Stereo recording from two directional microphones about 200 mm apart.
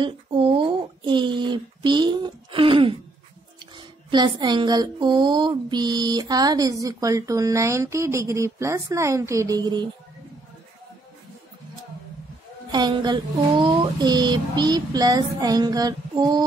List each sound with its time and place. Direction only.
0.0 s speech: 25° right (ahead or behind)
12.7 s speech: 20° right (ahead or behind)